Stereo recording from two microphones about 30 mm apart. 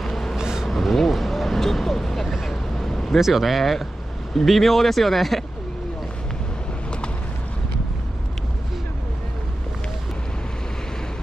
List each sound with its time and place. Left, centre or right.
0.0 s a sound: centre
0.4 s a sound: right
0.7 s vehicle: centre
2.2 s speech: centre
2.5 s vehicle: centre
3.2 s speech: centre
3.4 s speech: centre